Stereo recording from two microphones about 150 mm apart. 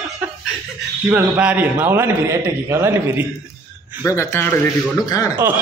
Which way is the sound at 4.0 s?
20° left (ahead or behind).